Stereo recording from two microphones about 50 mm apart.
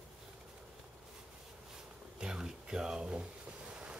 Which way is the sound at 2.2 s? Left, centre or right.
Centre.